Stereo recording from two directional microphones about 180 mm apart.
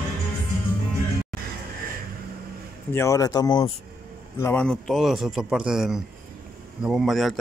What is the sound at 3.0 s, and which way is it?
Speech, 20° left (ahead or behind).